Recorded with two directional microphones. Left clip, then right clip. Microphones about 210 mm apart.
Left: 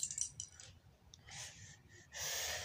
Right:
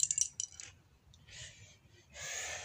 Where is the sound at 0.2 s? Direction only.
40° right (ahead or behind).